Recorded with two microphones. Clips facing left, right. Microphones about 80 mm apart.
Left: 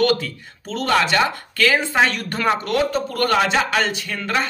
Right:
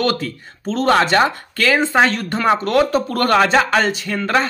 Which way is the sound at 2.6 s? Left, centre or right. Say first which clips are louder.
Right 5 dB; right.